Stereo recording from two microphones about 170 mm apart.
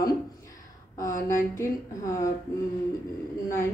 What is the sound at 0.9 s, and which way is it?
Speech, 20° left (ahead or behind).